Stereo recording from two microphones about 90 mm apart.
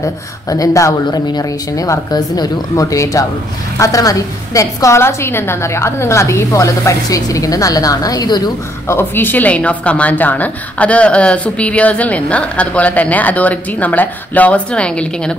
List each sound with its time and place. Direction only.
0.0 s a woman's voice: 40° left (ahead or behind)
8.8 s a woman's voice: 25° left (ahead or behind)